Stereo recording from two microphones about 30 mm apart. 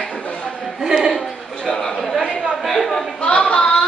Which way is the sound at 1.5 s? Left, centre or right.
Centre.